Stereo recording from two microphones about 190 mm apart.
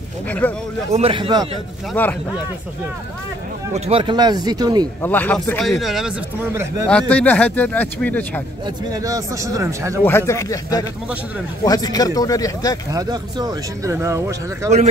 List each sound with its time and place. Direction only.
0.3 s speech: 10° left (ahead or behind)
0.9 s speech: 30° right (ahead or behind)
2.0 s speech: 10° left (ahead or behind)
3.7 s speech: 30° right (ahead or behind)
5.0 s a man's voice: 10° left (ahead or behind)
6.5 s speech: 15° right (ahead or behind)
6.9 s speech: 5° left (ahead or behind)
8.6 s speech: 20° right (ahead or behind)
10.0 s a man's voice: 15° left (ahead or behind)
12.9 s speech: 20° right (ahead or behind)